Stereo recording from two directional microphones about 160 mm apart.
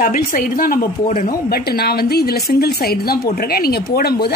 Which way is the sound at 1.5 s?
80° left.